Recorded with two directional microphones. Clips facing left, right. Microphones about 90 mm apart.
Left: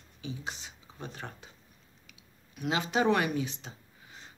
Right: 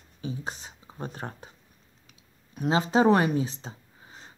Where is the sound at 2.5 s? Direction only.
30° right (ahead or behind).